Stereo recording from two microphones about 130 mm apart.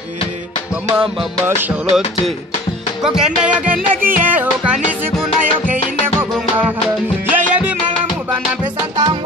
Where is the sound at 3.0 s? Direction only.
5° right (ahead or behind).